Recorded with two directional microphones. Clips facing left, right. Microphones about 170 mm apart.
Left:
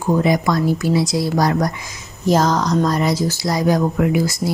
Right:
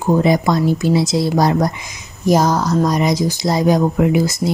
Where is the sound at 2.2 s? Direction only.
10° right (ahead or behind).